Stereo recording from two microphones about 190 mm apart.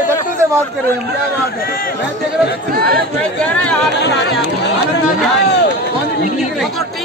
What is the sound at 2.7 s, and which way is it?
Speech, 55° right (ahead or behind).